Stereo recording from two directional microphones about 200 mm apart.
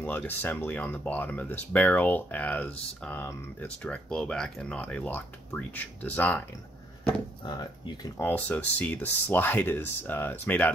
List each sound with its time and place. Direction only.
0.0 s speech: 10° left (ahead or behind)
7.4 s speech: 20° left (ahead or behind)
8.2 s speech: 10° left (ahead or behind)